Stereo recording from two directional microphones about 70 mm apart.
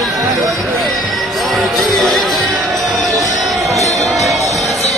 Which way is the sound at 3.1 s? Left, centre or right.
Right.